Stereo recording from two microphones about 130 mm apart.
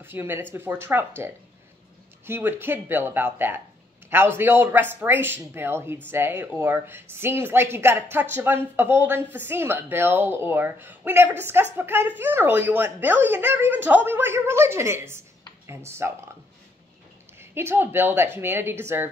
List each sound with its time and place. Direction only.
0.0 s speech: 15° right (ahead or behind)
17.4 s speech: 20° right (ahead or behind)